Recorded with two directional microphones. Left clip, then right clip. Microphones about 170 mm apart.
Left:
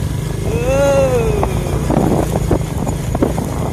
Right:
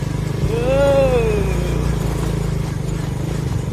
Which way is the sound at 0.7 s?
20° left (ahead or behind).